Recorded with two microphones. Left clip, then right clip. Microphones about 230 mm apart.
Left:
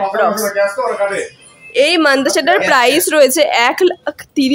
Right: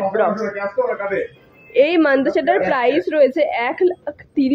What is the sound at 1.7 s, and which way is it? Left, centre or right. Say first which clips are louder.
A woman's voice: left 3 dB; centre.